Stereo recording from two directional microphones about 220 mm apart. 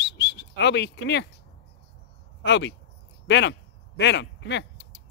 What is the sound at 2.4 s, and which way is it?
Speech, 55° left (ahead or behind).